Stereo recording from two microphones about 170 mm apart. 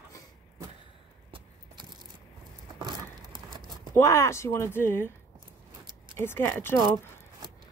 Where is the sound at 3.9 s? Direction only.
20° left (ahead or behind).